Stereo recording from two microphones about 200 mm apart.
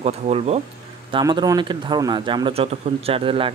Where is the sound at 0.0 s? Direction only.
30° right (ahead or behind).